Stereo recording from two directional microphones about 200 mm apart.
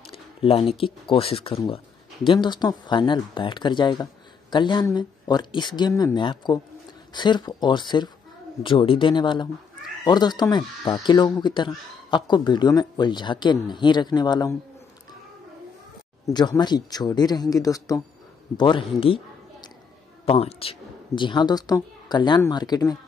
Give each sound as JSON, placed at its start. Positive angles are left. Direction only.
{"t": 0.0, "sound": "speech", "side_deg": 30}
{"t": 16.3, "sound": "a man's voice", "side_deg": 20}